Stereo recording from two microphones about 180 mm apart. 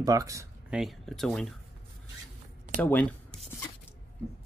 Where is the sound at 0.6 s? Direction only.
5° right (ahead or behind).